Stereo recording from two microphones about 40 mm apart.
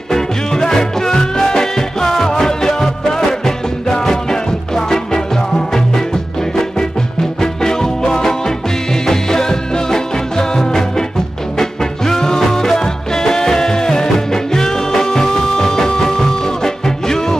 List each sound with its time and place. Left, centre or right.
0.1 s music: centre